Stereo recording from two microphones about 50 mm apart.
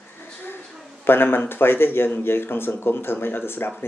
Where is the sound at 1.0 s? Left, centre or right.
Left.